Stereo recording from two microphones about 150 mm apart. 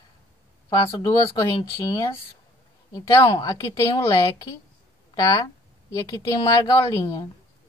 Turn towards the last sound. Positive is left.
turn(degrees=20)  # may be behind; listen again after turning